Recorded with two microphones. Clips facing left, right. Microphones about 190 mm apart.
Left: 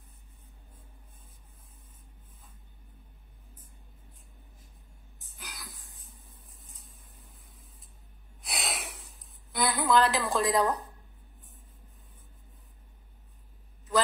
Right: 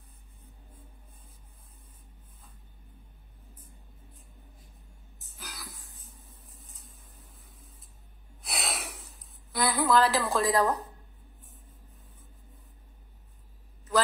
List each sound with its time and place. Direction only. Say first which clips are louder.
5.2 s a sound: right 2 dB; centre (ahead or behind)
8.4 s snort: right 1 dB; centre (ahead or behind)
9.5 s a woman's voice: right 1 dB; centre (ahead or behind)